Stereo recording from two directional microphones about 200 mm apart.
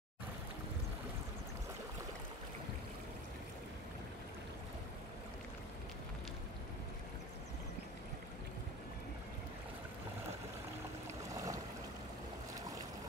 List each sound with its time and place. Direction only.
11.3 s boat: 15° right (ahead or behind)